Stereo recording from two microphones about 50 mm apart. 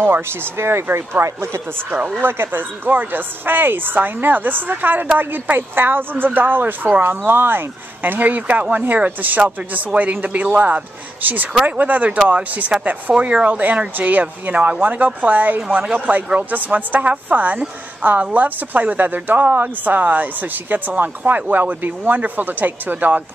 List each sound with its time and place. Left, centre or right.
0.0 s speech: right
1.2 s speech: right
2.1 s a woman's voice: right
8.2 s a woman's voice: right
13.1 s a woman's voice: right